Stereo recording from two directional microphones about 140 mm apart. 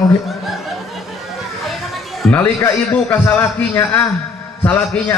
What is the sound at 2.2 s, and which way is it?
A man's voice, 5° left (ahead or behind).